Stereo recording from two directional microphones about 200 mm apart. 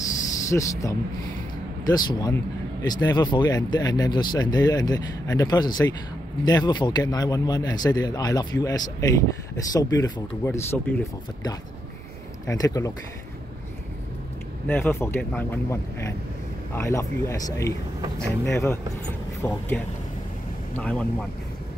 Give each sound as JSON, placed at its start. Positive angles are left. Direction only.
{"t": 0.5, "sound": "speech", "side_deg": 15}
{"t": 12.4, "sound": "speech", "side_deg": 15}
{"t": 14.7, "sound": "speech", "side_deg": 10}
{"t": 20.7, "sound": "speech", "side_deg": 5}